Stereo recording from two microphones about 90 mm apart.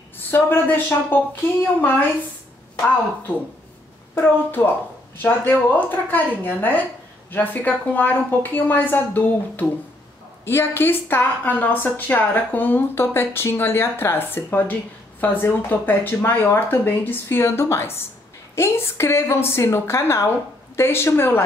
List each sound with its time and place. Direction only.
0.3 s a woman's voice: 25° left (ahead or behind)
4.1 s a woman's voice: 25° left (ahead or behind)